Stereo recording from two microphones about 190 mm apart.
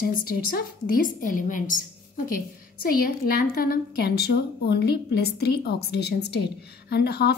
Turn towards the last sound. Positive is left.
turn(degrees=55)  # may be behind; listen again after turning